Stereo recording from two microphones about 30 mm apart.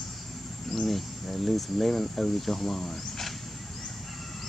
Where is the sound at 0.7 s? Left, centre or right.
Centre.